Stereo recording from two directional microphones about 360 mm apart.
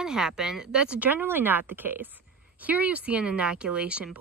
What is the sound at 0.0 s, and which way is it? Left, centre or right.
Speech, centre.